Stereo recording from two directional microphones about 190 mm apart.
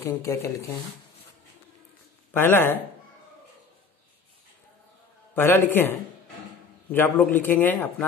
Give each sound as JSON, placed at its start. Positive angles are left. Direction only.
{"t": 0.0, "sound": "a man's voice", "side_deg": 15}
{"t": 2.3, "sound": "a man's voice", "side_deg": 10}
{"t": 5.3, "sound": "a man's voice", "side_deg": 10}